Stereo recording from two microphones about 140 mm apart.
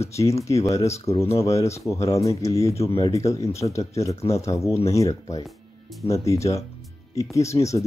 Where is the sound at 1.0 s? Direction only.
50° left (ahead or behind).